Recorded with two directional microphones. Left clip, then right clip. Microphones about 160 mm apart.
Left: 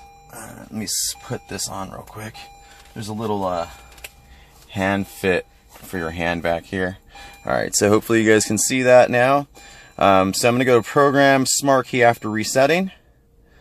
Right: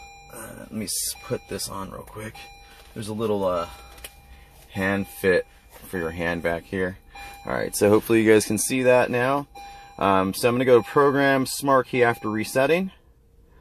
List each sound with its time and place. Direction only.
0.7 s speech: 30° left (ahead or behind)
4.7 s speech: 35° left (ahead or behind)